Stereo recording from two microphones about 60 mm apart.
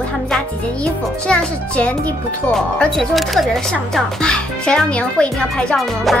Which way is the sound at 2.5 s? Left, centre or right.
Centre.